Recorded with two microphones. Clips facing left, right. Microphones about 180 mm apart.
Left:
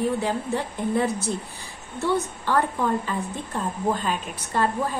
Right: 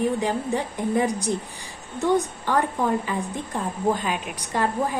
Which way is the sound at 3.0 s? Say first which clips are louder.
Right 1 dB; 15° right (ahead or behind).